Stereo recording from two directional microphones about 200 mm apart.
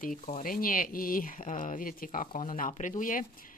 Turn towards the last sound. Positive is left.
turn(degrees=45)  # may be behind; listen again after turning